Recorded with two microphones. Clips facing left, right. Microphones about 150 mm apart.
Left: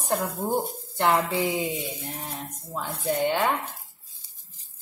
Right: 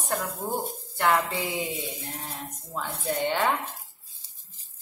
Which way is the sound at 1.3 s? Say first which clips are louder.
Left 4 dB; 15° left (ahead or behind).